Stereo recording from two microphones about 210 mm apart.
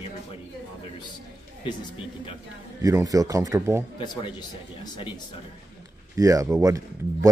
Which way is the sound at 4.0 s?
20° left (ahead or behind).